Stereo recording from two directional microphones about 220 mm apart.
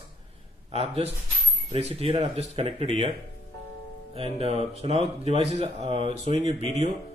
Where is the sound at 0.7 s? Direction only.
25° right (ahead or behind).